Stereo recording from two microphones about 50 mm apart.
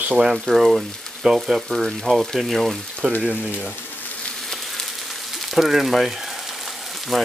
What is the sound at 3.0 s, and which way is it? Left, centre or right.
Speech, right.